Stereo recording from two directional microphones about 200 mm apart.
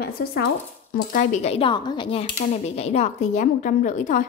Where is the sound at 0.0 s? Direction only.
50° left (ahead or behind).